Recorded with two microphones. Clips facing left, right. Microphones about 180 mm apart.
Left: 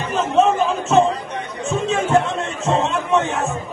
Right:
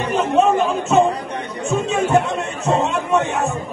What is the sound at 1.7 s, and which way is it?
Chatter, centre (ahead or behind).